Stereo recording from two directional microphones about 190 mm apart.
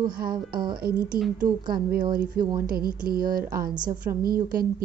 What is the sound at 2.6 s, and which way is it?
A woman's voice, 50° right (ahead or behind).